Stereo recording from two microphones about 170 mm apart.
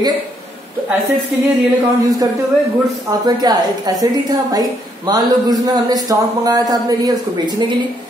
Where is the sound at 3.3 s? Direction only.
25° right (ahead or behind).